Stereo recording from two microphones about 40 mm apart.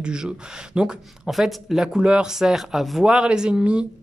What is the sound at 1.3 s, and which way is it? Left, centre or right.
Speech, centre.